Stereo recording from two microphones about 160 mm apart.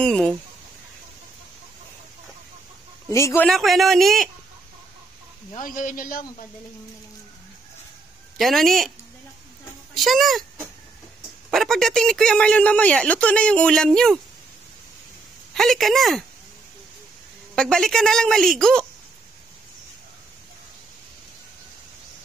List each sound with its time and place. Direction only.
0.0 s speech: 5° left (ahead or behind)
3.1 s speech: 20° left (ahead or behind)
3.4 s a man's voice: centre (ahead or behind)
5.5 s speech: 55° left (ahead or behind)
8.4 s a man's voice: centre (ahead or behind)
9.9 s a man's voice: centre (ahead or behind)
11.5 s a man's voice: centre (ahead or behind)
15.5 s a man's voice: centre (ahead or behind)
17.6 s a man's voice: 5° left (ahead or behind)